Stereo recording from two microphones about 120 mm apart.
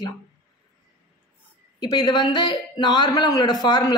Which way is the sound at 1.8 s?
40° left (ahead or behind).